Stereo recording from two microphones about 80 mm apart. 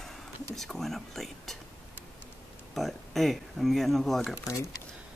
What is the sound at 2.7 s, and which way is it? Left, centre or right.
Speech, centre.